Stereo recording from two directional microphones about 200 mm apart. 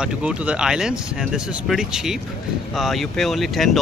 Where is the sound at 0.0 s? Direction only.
5° right (ahead or behind).